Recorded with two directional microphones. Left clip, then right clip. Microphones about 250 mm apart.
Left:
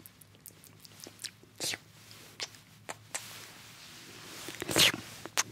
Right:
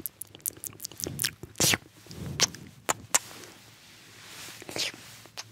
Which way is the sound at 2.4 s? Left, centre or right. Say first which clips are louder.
Right 14 dB; right.